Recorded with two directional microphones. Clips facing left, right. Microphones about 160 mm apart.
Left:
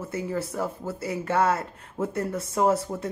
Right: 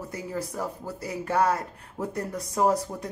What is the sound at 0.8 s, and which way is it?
Speech, 15° right (ahead or behind).